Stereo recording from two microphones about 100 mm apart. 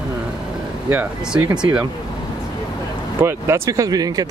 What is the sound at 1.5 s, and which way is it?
Speech, 45° right (ahead or behind).